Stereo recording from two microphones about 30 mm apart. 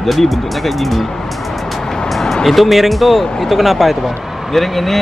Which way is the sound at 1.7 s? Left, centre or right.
Centre.